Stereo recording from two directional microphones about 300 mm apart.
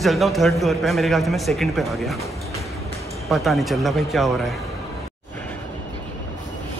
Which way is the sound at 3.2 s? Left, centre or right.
Centre.